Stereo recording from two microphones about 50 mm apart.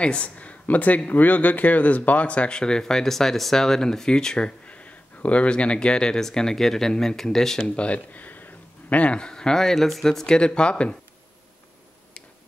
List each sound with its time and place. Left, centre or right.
0.0 s speech: left
7.7 s speech: left